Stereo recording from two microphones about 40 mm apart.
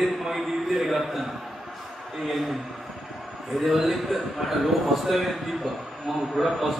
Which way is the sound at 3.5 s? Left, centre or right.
Centre.